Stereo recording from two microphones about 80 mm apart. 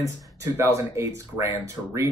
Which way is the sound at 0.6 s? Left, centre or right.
Right.